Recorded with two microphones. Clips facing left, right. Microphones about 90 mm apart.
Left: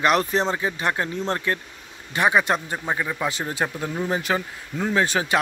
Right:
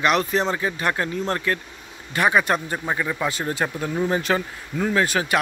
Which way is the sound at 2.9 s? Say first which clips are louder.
Right 1 dB; 10° left (ahead or behind).